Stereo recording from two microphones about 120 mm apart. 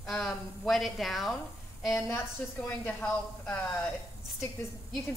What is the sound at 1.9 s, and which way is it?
A woman's voice, 20° left (ahead or behind).